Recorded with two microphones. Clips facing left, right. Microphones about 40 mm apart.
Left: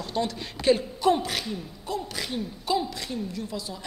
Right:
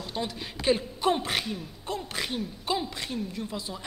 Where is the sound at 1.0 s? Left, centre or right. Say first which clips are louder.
Left 3 dB; right.